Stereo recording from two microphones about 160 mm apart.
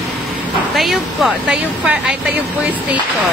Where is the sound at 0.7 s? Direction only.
Centre (ahead or behind).